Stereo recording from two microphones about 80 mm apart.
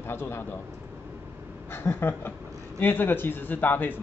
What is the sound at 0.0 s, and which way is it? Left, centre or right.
Speech, left.